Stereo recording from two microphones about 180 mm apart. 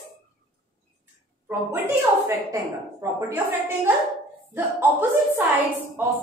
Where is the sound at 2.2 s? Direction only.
15° right (ahead or behind).